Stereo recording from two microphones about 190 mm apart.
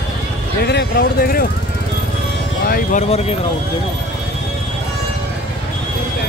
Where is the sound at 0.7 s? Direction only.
60° left (ahead or behind).